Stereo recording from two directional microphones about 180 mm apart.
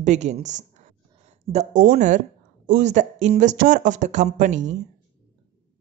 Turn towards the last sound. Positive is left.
turn(degrees=-45)  # may be behind; listen again after turning